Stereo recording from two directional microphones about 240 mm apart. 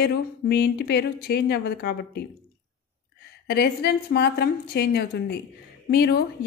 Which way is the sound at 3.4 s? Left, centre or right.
Left.